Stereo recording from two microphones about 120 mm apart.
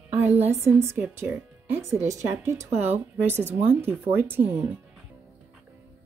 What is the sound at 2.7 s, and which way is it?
Speech, 60° right (ahead or behind).